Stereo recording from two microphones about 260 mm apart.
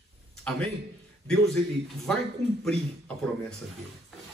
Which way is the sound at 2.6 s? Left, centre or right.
Centre.